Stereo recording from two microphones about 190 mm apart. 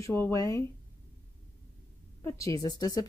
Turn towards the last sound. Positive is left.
turn(degrees=20)  # may be behind; listen again after turning